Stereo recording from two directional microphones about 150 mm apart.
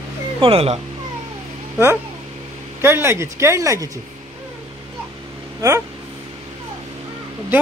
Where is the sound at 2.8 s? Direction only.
15° right (ahead or behind).